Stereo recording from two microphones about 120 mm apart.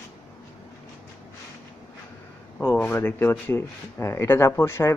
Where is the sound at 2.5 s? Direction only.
15° left (ahead or behind).